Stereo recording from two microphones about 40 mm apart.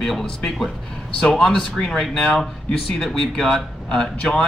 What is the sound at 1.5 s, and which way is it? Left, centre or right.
A man's voice, centre.